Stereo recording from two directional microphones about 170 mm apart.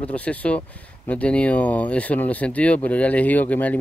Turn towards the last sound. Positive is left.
turn(degrees=10)  # may be behind; listen again after turning